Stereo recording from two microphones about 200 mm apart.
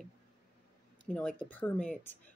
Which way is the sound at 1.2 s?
5° left (ahead or behind).